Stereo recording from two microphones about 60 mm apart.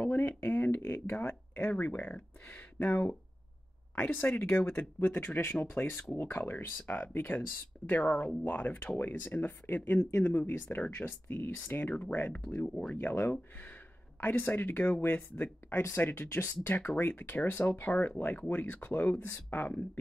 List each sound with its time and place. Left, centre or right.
0.2 s speech: left
12.6 s speech: centre
12.9 s speech: left